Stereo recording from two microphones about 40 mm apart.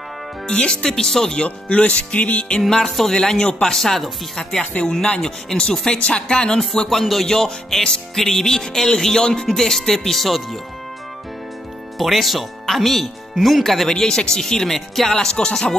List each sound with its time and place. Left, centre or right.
0.5 s speech: left
0.9 s music: centre
1.4 s speech: left
2.7 s music: centre
3.2 s speech: centre
3.6 s music: centre
5.6 s speech: left
6.9 s music: centre
10.0 s speech: centre
12.0 s speech: centre
13.8 s music: centre